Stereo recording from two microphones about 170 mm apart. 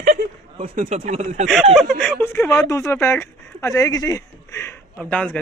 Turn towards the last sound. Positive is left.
turn(degrees=10)  # may be behind; listen again after turning